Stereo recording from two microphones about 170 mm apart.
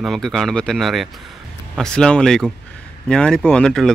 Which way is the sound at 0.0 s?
Centre (ahead or behind).